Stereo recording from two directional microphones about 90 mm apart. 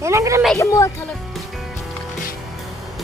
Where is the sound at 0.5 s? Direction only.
35° left (ahead or behind).